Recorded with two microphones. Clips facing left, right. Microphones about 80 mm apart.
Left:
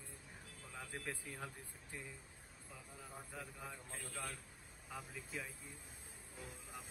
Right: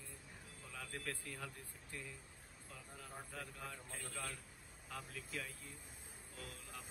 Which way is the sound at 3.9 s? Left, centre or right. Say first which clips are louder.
Left 1 dB; centre.